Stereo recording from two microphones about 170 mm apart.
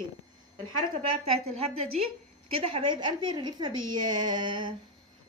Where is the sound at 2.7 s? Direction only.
30° right (ahead or behind).